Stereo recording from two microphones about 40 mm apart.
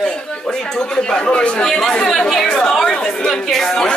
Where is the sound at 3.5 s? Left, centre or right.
Centre.